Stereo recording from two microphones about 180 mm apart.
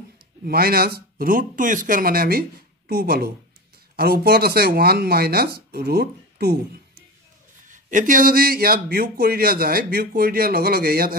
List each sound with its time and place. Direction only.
0.5 s speech: 55° right (ahead or behind)
7.6 s speech: 45° right (ahead or behind)